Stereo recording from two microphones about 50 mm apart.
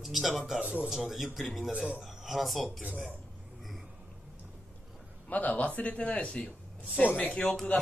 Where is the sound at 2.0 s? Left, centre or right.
Centre.